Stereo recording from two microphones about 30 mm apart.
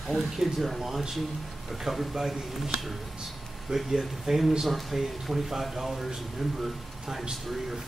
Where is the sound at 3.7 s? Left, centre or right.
Right.